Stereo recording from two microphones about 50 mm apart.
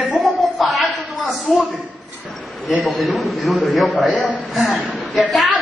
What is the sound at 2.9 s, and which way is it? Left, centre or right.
A man's voice, centre.